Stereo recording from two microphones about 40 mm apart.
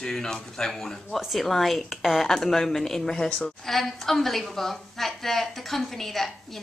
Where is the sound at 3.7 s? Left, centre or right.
Centre.